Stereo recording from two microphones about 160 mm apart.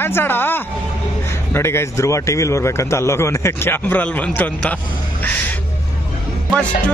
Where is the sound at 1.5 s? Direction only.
15° left (ahead or behind).